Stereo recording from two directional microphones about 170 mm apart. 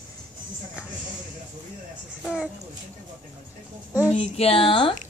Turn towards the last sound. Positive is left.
turn(degrees=30)  # may be behind; listen again after turning